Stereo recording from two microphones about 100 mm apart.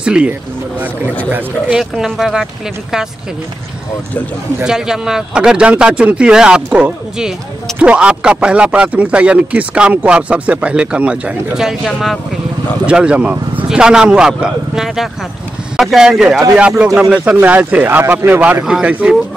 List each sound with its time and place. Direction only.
0.0 s speech: 10° right (ahead or behind)
1.8 s speech: 5° right (ahead or behind)
4.6 s speech: 5° right (ahead or behind)